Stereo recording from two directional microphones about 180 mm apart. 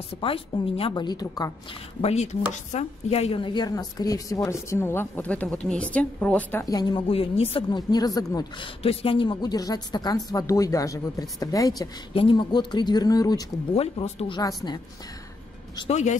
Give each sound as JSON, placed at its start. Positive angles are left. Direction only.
{"t": 0.2, "sound": "speech", "side_deg": 30}
{"t": 2.0, "sound": "speech", "side_deg": 35}
{"t": 6.6, "sound": "speech", "side_deg": 20}
{"t": 8.8, "sound": "speech", "side_deg": 30}
{"t": 13.7, "sound": "speech", "side_deg": 35}
{"t": 14.4, "sound": "speech", "side_deg": 20}
{"t": 15.9, "sound": "speech", "side_deg": 40}